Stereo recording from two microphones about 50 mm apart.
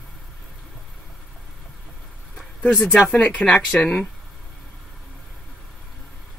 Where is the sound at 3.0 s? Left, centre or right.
Left.